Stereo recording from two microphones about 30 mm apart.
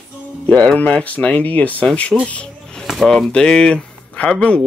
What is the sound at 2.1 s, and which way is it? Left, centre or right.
Speech, right.